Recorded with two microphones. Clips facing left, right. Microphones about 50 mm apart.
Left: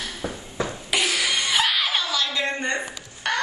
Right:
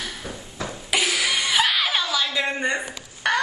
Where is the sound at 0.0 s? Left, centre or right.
Centre.